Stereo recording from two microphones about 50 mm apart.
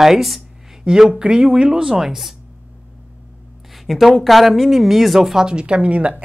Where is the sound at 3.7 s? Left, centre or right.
Centre.